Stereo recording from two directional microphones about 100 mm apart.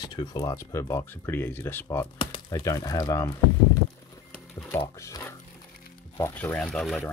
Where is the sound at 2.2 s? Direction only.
55° left (ahead or behind).